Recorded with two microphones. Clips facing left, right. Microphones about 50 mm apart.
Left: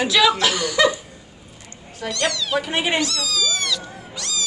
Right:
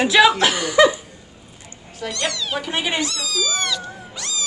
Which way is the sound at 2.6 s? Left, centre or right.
Left.